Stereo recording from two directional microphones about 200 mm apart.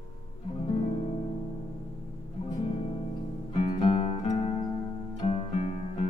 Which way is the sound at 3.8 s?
25° left (ahead or behind).